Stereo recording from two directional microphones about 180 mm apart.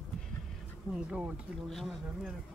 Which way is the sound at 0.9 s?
5° right (ahead or behind).